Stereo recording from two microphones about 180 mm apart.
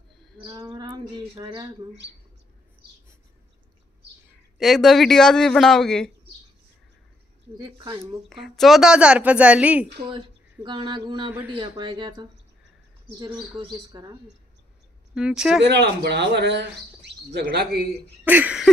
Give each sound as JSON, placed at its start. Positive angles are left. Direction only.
{"t": 0.4, "sound": "speech", "side_deg": -20}
{"t": 4.6, "sound": "speech", "side_deg": 0}
{"t": 7.5, "sound": "speech", "side_deg": -25}
{"t": 8.3, "sound": "speech", "side_deg": 0}
{"t": 10.0, "sound": "speech", "side_deg": -25}
{"t": 13.6, "sound": "speech", "side_deg": -25}
{"t": 15.1, "sound": "speech", "side_deg": -5}
{"t": 15.6, "sound": "speech", "side_deg": -70}
{"t": 18.2, "sound": "a sound", "side_deg": -10}